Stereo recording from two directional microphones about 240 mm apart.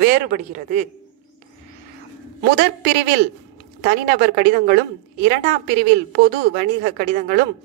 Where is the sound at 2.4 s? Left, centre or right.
Right.